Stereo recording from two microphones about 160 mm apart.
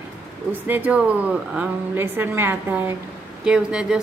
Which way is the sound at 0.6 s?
10° right (ahead or behind).